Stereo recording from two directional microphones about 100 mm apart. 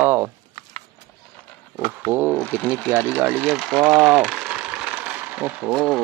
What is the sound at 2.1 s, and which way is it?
Speech, 15° right (ahead or behind).